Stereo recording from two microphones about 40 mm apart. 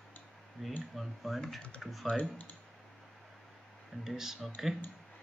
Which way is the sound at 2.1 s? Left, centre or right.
Left.